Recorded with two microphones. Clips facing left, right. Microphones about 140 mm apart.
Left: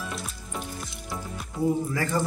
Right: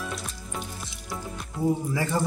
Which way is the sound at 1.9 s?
15° right (ahead or behind).